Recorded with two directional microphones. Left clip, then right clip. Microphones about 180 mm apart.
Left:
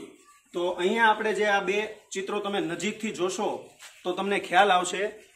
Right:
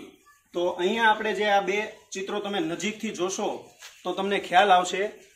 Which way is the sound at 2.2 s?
15° right (ahead or behind).